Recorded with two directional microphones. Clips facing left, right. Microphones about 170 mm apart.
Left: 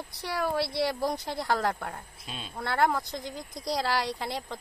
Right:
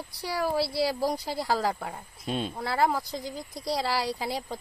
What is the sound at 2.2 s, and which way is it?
Speech, 55° right (ahead or behind).